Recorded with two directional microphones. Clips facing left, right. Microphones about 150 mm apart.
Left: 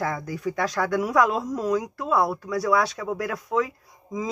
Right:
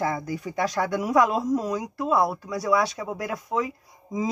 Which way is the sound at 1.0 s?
Centre (ahead or behind).